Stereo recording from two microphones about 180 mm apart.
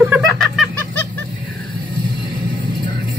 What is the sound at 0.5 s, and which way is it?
Fowl, 5° left (ahead or behind).